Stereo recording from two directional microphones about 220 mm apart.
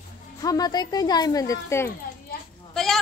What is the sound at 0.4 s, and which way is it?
Speech, 15° left (ahead or behind).